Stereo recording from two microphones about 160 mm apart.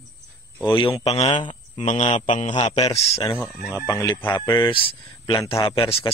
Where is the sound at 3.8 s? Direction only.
20° left (ahead or behind); by 6.1 s 35° left (ahead or behind).